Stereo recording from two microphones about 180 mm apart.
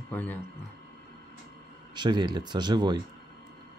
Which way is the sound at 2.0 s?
25° right (ahead or behind).